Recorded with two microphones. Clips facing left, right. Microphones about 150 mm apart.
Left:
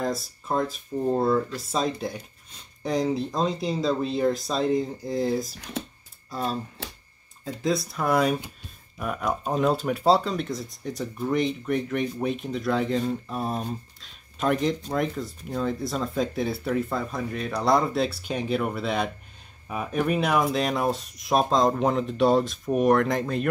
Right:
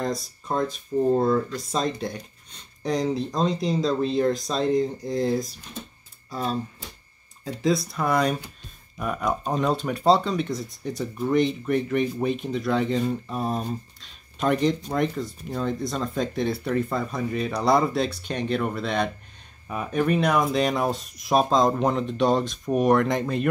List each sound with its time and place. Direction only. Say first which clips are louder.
0.0 s speech: even; 5° left (ahead or behind)